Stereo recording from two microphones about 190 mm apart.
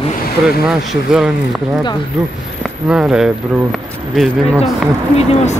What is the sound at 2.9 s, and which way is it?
Speech, 5° right (ahead or behind).